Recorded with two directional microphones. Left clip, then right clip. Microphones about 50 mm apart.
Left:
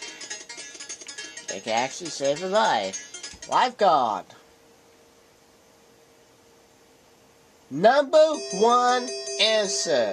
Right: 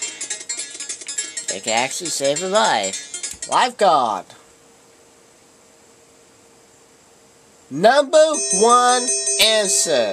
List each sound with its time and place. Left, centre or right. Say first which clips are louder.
0.0 s music: right 7 dB; right
1.6 s speech: right 5 dB; right
2.9 s music: right 7 dB; right
3.6 s music: right 5 dB; right
7.7 s music: right 4 dB; right